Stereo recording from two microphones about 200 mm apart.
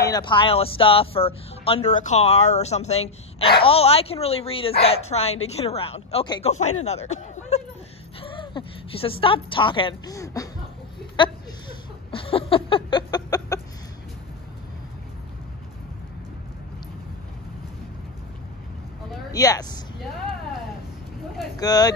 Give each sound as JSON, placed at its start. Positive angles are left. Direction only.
{"t": 0.0, "sound": "speech", "side_deg": 20}
{"t": 12.1, "sound": "a sound", "side_deg": 25}
{"t": 19.3, "sound": "speech", "side_deg": 20}
{"t": 21.5, "sound": "speech", "side_deg": 20}